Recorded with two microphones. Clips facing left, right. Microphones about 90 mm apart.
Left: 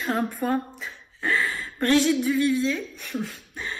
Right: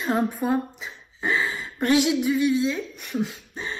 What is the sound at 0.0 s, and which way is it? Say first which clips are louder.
Speech: right 2 dB; 15° right (ahead or behind).